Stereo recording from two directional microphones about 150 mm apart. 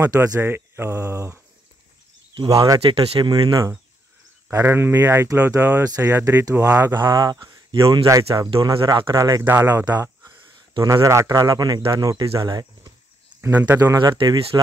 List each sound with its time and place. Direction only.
0.0 s speech: 20° right (ahead or behind)
2.8 s speech: 40° right (ahead or behind)
13.4 s speech: 15° right (ahead or behind)
13.7 s speech: 25° right (ahead or behind)